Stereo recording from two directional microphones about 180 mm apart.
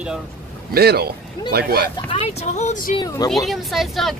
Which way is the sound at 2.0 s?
35° left (ahead or behind).